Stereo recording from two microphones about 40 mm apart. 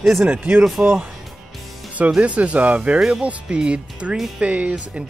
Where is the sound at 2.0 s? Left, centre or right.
Right.